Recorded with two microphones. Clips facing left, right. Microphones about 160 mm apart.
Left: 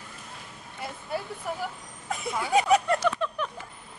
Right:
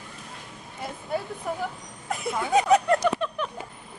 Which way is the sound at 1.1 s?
Centre (ahead or behind).